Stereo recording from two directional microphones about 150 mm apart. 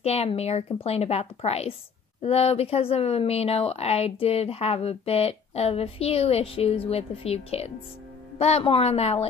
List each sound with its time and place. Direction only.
0.0 s a woman's voice: 45° left (ahead or behind)